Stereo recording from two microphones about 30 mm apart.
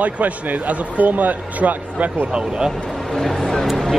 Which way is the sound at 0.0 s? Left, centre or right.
Right.